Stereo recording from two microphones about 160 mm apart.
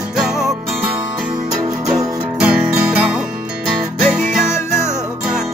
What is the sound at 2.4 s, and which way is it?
Music, 5° right (ahead or behind).